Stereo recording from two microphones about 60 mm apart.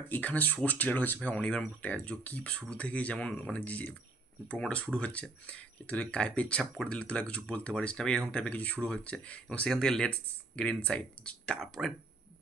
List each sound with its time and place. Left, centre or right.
0.1 s speech: left
9.7 s speech: centre
10.0 s speech: centre
11.6 s speech: centre